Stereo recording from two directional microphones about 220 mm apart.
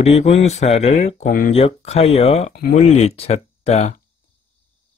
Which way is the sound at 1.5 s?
30° left (ahead or behind).